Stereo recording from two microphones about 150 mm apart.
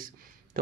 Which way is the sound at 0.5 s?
75° right (ahead or behind).